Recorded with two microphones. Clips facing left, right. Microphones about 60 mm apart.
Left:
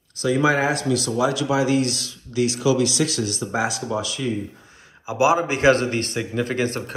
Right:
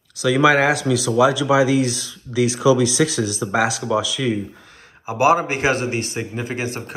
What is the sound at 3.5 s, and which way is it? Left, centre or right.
Speech, right.